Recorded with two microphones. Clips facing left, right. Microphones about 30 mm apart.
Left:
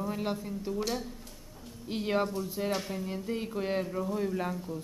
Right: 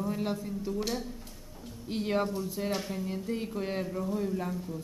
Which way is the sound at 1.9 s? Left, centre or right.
Centre.